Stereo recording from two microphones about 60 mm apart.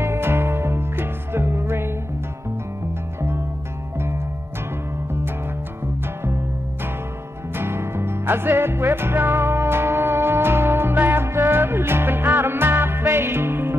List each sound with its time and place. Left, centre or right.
0.0 s music: right
7.5 s music: right